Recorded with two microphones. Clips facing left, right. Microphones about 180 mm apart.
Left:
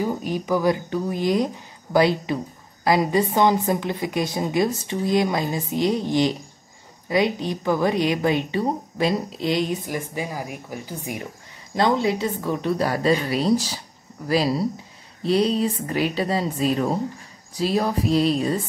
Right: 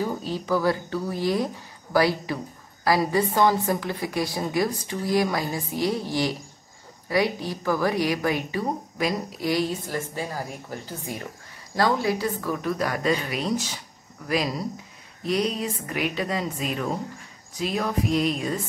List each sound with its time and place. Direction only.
0.0 s a woman's voice: 15° left (ahead or behind); by 18.6 s 30° left (ahead or behind)